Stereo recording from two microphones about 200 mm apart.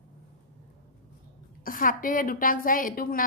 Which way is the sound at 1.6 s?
45° left (ahead or behind).